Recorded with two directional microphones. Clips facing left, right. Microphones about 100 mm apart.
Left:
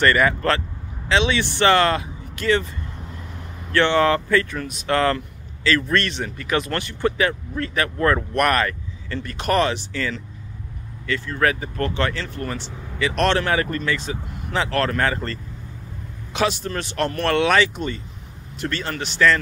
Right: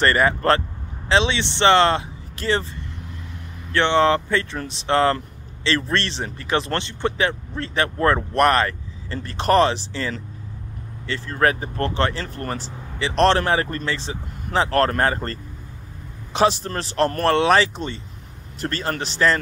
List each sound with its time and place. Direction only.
0.0 s speech: 30° right (ahead or behind)
3.7 s speech: 20° right (ahead or behind); by 15.3 s 35° right (ahead or behind)
16.3 s speech: 35° right (ahead or behind)